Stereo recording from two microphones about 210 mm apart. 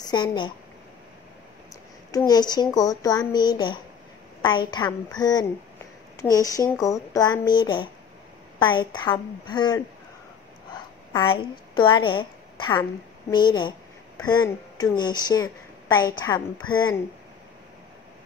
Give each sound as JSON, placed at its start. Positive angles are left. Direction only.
{"t": 0.0, "sound": "speech", "side_deg": 20}
{"t": 2.0, "sound": "speech", "side_deg": 15}
{"t": 11.1, "sound": "a woman's voice", "side_deg": 20}